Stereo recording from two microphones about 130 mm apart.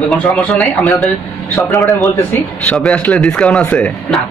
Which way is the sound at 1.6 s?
25° left (ahead or behind).